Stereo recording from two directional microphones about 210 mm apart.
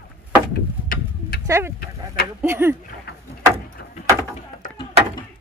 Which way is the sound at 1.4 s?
15° right (ahead or behind).